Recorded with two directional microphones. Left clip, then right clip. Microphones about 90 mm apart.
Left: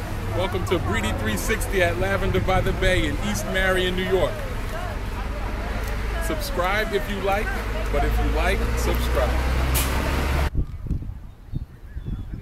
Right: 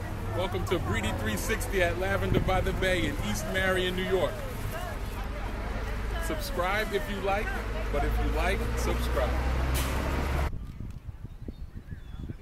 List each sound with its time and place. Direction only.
0.4 s speech: centre (ahead or behind)
6.2 s speech: centre (ahead or behind)
9.0 s vehicle: 15° left (ahead or behind)